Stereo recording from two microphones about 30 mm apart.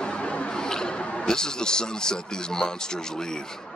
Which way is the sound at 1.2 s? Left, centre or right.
Left.